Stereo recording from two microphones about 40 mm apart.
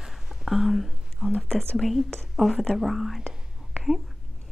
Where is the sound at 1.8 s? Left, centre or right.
Centre.